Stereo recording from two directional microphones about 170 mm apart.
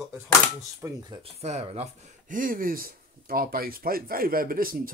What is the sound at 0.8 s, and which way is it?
Speech, 25° right (ahead or behind).